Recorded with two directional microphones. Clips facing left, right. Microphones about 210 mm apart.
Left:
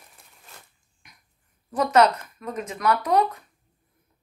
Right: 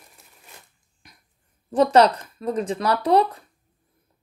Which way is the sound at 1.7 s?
30° right (ahead or behind).